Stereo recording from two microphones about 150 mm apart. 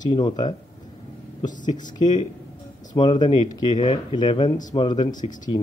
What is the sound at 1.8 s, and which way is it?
Speech, 30° left (ahead or behind).